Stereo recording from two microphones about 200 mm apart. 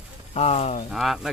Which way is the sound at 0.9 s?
Centre (ahead or behind).